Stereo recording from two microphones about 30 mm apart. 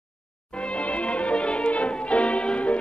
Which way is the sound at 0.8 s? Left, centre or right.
Left.